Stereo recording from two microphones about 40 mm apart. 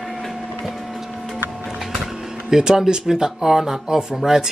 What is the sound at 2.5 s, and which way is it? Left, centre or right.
Speech, centre.